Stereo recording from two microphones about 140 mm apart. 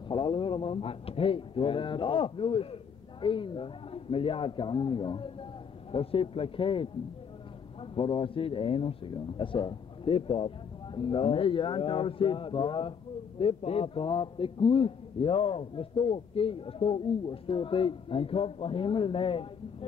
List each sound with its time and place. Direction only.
0.1 s speech: 35° left (ahead or behind)